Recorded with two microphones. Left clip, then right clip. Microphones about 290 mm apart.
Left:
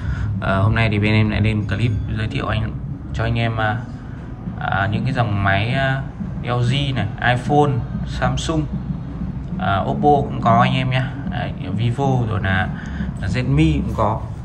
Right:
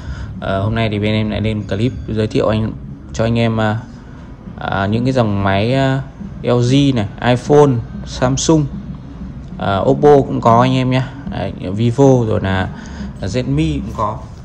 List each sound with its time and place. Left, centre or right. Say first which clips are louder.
0.4 s speech: right 2 dB; centre
9.6 s speech: right 6 dB; centre